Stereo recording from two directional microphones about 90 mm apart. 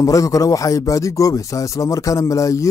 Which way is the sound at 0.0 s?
40° left (ahead or behind).